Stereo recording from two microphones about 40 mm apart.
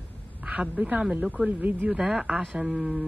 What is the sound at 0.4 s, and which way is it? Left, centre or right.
A woman's voice, right.